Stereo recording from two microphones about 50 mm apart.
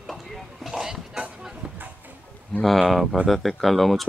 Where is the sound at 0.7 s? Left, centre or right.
Centre.